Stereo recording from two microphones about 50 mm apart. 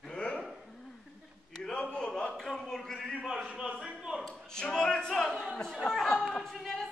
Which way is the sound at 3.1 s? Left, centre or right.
Centre.